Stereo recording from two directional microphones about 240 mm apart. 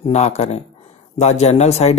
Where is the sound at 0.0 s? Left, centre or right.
Left.